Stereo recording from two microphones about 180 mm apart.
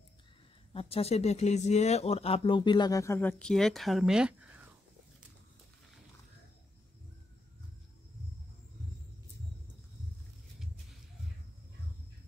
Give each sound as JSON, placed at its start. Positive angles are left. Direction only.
{"t": 0.7, "sound": "speech", "side_deg": 35}